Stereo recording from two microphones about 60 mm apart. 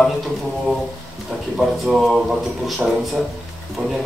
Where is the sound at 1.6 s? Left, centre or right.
Centre.